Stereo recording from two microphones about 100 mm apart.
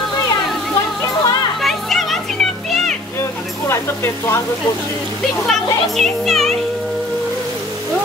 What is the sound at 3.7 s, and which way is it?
Speech, 25° left (ahead or behind).